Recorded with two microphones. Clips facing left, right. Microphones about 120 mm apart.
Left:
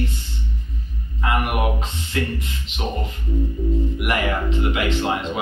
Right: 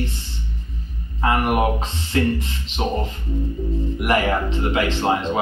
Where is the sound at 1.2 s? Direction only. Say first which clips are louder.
Right 4 dB; 30° right (ahead or behind).